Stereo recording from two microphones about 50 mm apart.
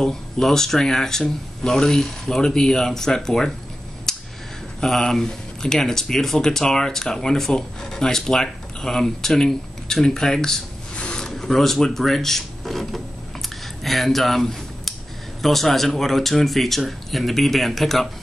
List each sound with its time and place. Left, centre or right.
0.0 s speech: centre
4.1 s a sound: centre
4.8 s speech: centre
11.0 s a sound: left
11.2 s drawer open or close: centre
15.4 s speech: centre